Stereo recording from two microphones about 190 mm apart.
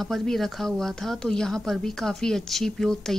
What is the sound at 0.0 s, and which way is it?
A woman's voice, centre (ahead or behind).